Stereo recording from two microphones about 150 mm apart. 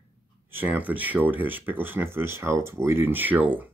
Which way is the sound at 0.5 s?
10° right (ahead or behind).